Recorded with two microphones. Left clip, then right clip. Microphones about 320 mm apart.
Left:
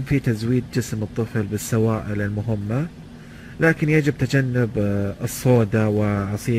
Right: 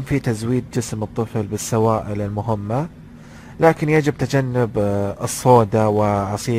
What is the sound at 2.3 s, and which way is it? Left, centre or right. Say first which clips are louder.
Speech: right 6 dB; right.